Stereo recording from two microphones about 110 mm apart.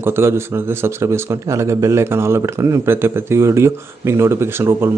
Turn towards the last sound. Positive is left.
turn(degrees=-20)  # may be behind; listen again after turning